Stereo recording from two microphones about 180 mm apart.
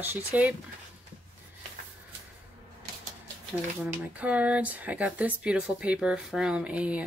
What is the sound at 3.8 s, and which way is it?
A woman's voice, 5° right (ahead or behind).